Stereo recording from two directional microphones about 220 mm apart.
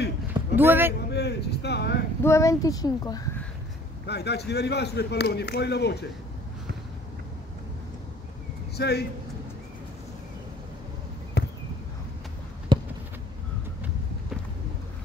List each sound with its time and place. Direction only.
0.3 s a sound: 10° right (ahead or behind)
1.1 s speech: 50° left (ahead or behind)
2.2 s speech: 15° left (ahead or behind)
4.1 s a man's voice: 50° left (ahead or behind)
8.7 s speech: 45° left (ahead or behind)
11.4 s a sound: 50° left (ahead or behind)
12.7 s basketball bounce: 20° right (ahead or behind)